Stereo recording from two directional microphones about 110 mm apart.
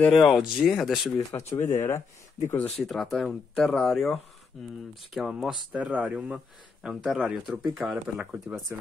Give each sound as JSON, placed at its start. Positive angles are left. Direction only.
{"t": 0.0, "sound": "speech", "side_deg": 0}
{"t": 1.3, "sound": "speech", "side_deg": 20}
{"t": 2.7, "sound": "speech", "side_deg": 0}